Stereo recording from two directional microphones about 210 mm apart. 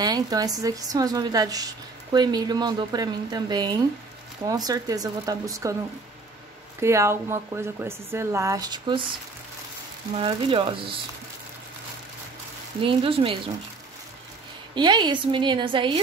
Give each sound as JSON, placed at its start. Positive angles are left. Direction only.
{"t": 0.0, "sound": "a woman's voice", "side_deg": -20}
{"t": 6.8, "sound": "speech", "side_deg": -15}
{"t": 10.1, "sound": "a woman's voice", "side_deg": -25}
{"t": 12.8, "sound": "a woman's voice", "side_deg": -25}
{"t": 14.8, "sound": "a woman's voice", "side_deg": -20}